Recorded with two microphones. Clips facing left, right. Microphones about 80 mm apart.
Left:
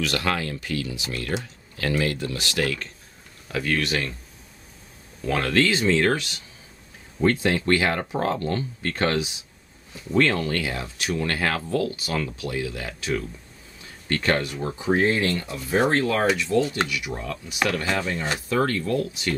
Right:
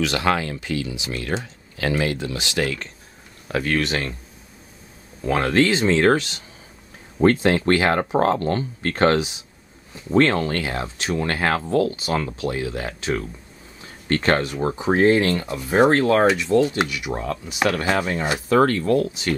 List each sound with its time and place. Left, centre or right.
0.0 s speech: right
3.4 s speech: right
5.2 s speech: right
7.2 s speech: right; by 16.9 s centre
17.1 s speech: right